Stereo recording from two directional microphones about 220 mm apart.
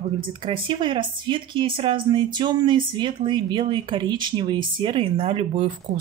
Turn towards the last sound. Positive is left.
turn(degrees=-25)  # may be behind; listen again after turning